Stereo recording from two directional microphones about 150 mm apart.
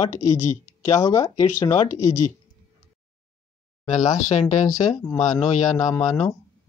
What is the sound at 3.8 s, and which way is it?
Speech, 50° left (ahead or behind).